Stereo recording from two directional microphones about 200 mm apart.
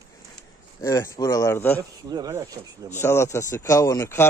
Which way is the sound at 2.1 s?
20° right (ahead or behind).